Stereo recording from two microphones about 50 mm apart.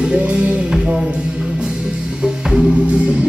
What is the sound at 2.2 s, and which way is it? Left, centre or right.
Music, centre.